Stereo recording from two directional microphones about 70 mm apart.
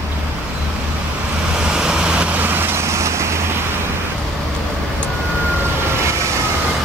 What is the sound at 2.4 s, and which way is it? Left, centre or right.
Vehicle, right.